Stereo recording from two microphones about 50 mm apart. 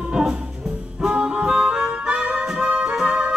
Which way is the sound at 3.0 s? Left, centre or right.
Right.